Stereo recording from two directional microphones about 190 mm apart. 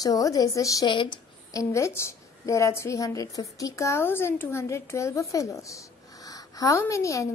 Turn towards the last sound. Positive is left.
turn(degrees=15)  # may be behind; listen again after turning